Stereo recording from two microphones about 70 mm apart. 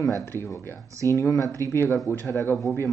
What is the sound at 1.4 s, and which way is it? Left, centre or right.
Speech, right.